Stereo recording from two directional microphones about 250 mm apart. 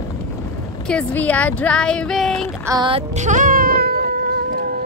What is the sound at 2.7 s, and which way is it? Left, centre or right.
Child singing, centre.